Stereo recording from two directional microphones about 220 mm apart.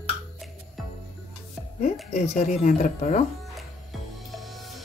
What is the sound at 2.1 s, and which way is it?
Speech, 30° left (ahead or behind).